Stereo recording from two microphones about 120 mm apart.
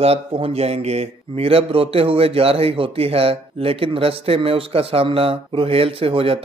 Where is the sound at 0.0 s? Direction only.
60° right (ahead or behind).